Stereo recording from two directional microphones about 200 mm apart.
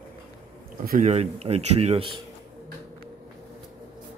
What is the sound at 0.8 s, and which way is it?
Speech, 35° right (ahead or behind).